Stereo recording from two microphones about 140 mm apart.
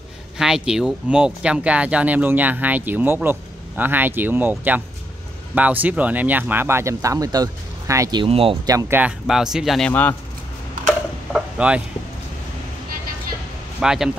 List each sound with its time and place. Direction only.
0.4 s speech: 5° right (ahead or behind); by 8.2 s 20° right (ahead or behind)
8.2 s speech: 40° right (ahead or behind)
8.6 s speech: 20° right (ahead or behind)
9.3 s speech: 5° right (ahead or behind)
9.8 s speech: 10° left (ahead or behind)
11.3 s a sound: 10° right (ahead or behind)
13.7 s speech: 5° right (ahead or behind)